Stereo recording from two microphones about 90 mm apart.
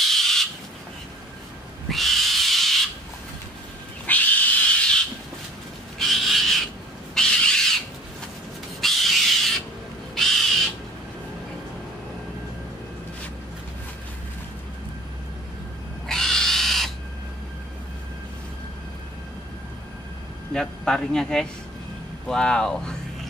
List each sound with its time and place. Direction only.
0.0 s a sound: 5° left (ahead or behind)
1.9 s a sound: centre (ahead or behind)
4.0 s wild animals: 20° left (ahead or behind)
5.9 s owl: centre (ahead or behind)
8.8 s owl: centre (ahead or behind)
10.1 s crow: 5° left (ahead or behind)
16.1 s pig: 5° left (ahead or behind)
20.5 s speech: 5° left (ahead or behind)